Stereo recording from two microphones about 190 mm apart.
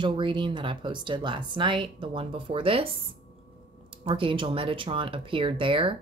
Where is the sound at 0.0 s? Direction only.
25° right (ahead or behind).